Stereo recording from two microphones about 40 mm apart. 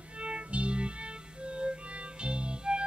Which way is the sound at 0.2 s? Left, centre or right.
Right.